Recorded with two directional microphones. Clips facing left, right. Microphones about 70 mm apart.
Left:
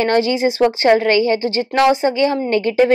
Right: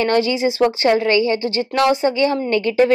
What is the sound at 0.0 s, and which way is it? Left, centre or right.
A woman's voice, left.